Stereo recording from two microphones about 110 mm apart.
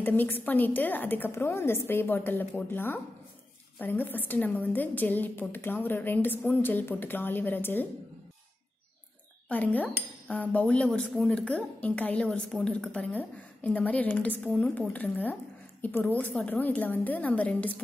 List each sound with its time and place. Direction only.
0.0 s a woman's voice: 15° left (ahead or behind)
9.5 s a woman's voice: 15° left (ahead or behind)